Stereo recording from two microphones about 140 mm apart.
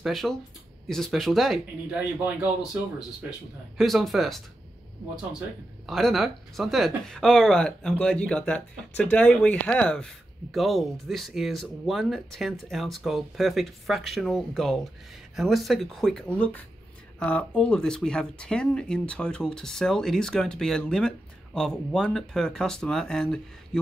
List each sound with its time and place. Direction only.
0.0 s speech: centre (ahead or behind)
5.9 s speech: centre (ahead or behind)